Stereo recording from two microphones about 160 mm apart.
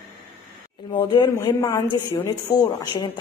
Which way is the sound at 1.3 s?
20° left (ahead or behind).